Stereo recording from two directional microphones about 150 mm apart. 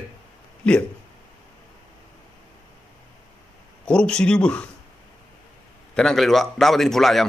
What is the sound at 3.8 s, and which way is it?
Speech, 5° left (ahead or behind).